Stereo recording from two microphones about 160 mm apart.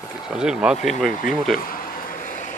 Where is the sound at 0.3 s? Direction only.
5° right (ahead or behind).